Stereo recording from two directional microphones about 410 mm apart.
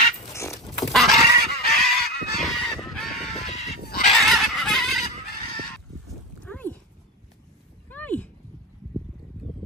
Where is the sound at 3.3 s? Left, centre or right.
Centre.